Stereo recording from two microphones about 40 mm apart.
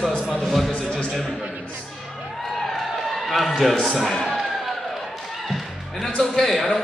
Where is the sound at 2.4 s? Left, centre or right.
Centre.